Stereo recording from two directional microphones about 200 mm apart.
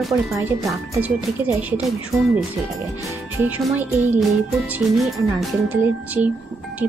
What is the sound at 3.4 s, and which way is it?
Music, 5° right (ahead or behind).